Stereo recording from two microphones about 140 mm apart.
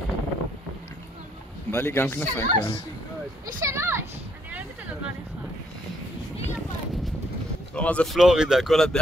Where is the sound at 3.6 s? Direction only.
20° right (ahead or behind).